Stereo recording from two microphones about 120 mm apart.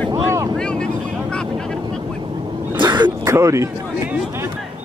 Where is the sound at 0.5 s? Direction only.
5° left (ahead or behind).